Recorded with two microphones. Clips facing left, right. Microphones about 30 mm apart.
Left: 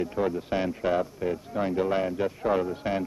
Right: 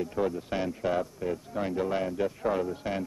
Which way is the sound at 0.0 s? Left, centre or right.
Centre.